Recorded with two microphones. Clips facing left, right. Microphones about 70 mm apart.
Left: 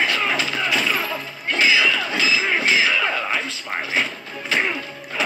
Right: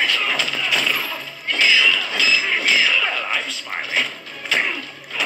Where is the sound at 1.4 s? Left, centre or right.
Left.